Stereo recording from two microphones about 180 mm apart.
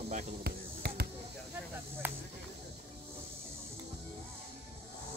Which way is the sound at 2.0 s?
10° right (ahead or behind).